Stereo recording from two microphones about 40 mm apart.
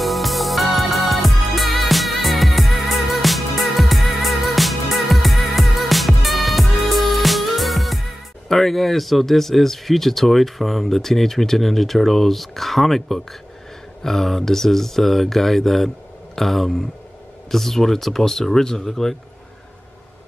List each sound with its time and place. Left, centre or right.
0.0 s music: centre
8.5 s speech: centre